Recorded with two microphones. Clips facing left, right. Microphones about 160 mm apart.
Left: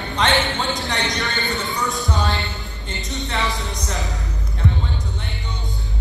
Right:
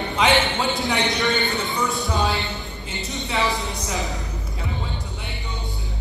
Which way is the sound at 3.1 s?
Centre (ahead or behind).